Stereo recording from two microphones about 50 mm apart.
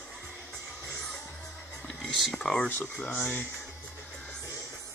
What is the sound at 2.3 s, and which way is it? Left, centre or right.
Speech, centre.